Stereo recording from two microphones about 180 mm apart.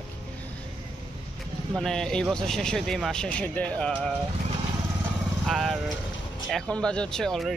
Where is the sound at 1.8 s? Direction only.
5° left (ahead or behind).